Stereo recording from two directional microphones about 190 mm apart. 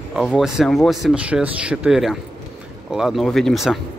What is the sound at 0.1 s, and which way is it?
Speech, 5° right (ahead or behind).